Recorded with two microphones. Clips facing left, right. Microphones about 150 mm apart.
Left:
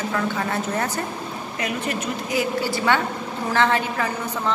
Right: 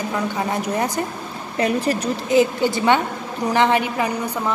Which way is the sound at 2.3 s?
20° right (ahead or behind).